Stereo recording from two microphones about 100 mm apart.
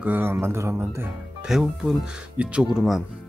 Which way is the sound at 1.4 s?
5° right (ahead or behind).